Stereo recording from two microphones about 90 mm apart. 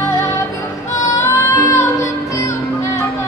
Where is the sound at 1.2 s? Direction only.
35° left (ahead or behind).